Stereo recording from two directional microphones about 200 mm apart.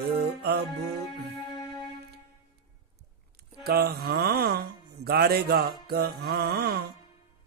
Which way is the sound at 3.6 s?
50° right (ahead or behind).